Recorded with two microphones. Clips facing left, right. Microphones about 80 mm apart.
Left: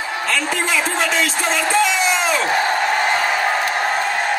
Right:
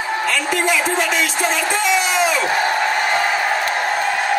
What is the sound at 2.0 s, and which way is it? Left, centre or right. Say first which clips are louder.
Crowd: right 1 dB; left.